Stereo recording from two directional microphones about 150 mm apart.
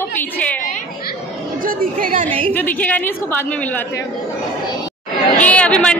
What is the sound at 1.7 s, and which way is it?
Speech, 70° right (ahead or behind).